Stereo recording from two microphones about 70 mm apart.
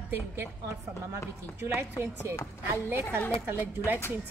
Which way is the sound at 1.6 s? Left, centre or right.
Right.